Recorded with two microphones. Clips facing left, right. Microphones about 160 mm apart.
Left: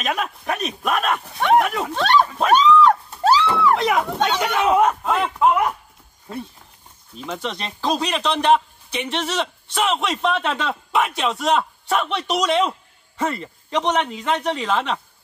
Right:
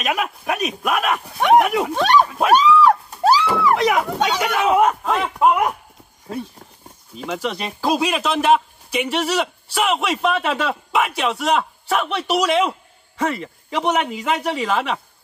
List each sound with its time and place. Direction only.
0.0 s speech: 5° right (ahead or behind)
1.4 s a sound: 15° right (ahead or behind)
7.2 s speech: 5° right (ahead or behind)